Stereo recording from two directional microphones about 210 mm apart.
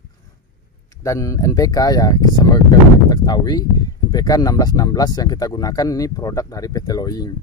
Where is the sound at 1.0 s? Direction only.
15° left (ahead or behind).